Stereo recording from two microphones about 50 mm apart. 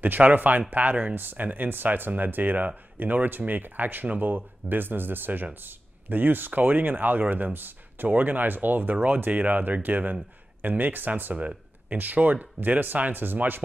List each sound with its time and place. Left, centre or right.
0.0 s speech: right
11.3 s a sound: right
12.0 s speech: right